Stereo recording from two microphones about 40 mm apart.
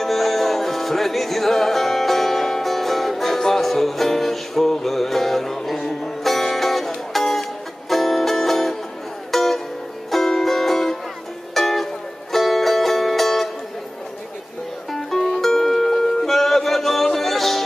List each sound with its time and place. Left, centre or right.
0.0 s music: centre
14.9 s music: centre